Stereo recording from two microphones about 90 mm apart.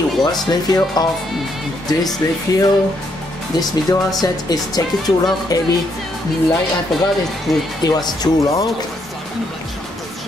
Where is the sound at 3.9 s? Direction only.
45° left (ahead or behind).